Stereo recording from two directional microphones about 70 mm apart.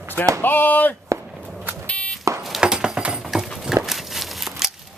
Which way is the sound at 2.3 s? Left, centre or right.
Right.